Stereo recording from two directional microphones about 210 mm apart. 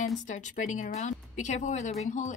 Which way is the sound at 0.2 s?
35° left (ahead or behind).